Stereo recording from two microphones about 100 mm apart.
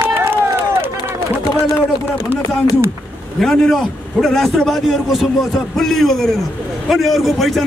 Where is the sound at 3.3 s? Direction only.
5° left (ahead or behind).